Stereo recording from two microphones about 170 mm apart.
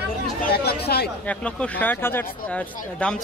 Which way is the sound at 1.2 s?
10° left (ahead or behind).